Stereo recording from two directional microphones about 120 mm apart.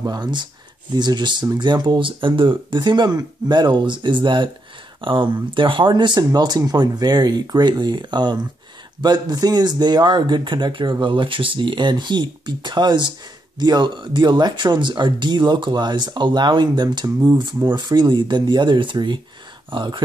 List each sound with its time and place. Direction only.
0.0 s speech: 35° right (ahead or behind)